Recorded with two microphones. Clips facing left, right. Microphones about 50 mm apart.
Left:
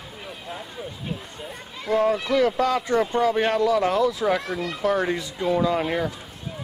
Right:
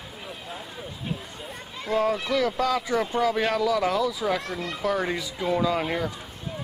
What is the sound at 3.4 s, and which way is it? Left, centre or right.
A child's voice, centre.